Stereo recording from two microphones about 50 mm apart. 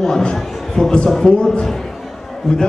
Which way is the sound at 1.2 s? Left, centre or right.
Left.